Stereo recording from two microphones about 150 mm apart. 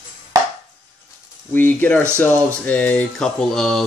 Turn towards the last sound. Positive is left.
turn(degrees=5)  # may be behind; listen again after turning